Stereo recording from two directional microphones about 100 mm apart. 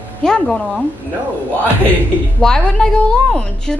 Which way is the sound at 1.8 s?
15° left (ahead or behind).